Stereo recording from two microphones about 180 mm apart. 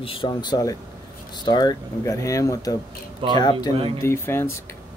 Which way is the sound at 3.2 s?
30° right (ahead or behind).